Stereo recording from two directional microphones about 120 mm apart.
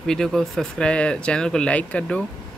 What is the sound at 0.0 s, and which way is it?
Speech, 5° left (ahead or behind).